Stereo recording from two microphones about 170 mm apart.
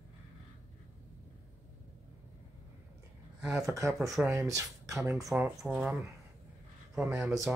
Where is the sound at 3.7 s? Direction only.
20° right (ahead or behind).